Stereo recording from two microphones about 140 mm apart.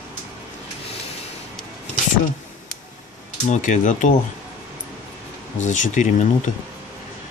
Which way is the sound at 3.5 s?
60° left (ahead or behind).